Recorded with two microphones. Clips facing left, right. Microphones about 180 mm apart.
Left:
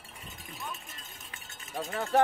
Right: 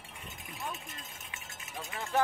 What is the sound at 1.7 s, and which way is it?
Speech, 40° left (ahead or behind).